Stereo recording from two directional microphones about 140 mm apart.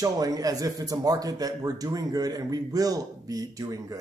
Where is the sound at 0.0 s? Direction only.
25° right (ahead or behind).